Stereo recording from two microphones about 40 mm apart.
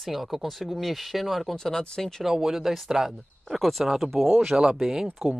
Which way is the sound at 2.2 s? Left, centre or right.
Centre.